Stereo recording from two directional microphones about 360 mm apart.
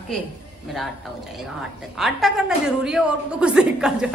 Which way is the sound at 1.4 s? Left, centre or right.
Centre.